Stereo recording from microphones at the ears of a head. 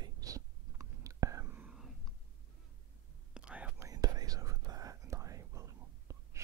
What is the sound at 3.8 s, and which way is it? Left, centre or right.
Whispering, right.